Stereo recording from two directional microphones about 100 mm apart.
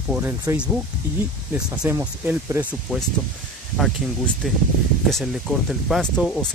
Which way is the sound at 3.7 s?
Centre (ahead or behind).